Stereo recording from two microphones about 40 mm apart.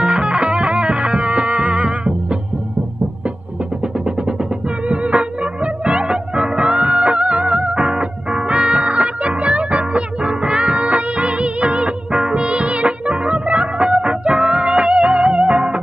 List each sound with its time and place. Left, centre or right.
0.0 s music: right
4.8 s music: right